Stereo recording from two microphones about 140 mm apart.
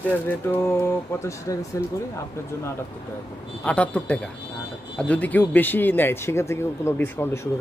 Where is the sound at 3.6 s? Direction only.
10° left (ahead or behind).